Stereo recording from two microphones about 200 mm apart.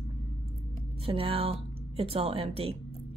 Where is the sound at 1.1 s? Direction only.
30° right (ahead or behind).